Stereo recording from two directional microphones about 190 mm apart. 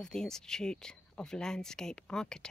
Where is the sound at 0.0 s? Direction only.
5° left (ahead or behind).